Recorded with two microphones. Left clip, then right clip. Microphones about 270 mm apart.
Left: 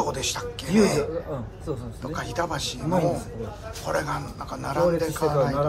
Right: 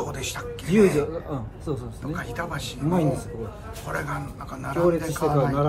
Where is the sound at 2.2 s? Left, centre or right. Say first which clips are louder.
Left 4 dB; centre.